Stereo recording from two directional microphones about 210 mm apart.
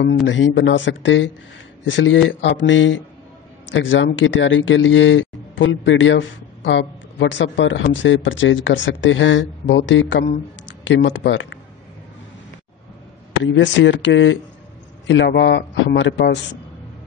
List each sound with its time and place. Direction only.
0.0 s speech: 60° left (ahead or behind)
13.4 s speech: 60° left (ahead or behind)